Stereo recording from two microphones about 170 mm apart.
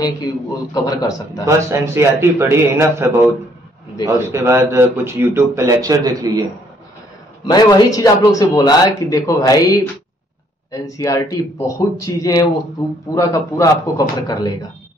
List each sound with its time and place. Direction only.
0.7 s speech: 25° left (ahead or behind)
1.4 s a man's voice: 15° right (ahead or behind)
7.4 s speech: 20° left (ahead or behind)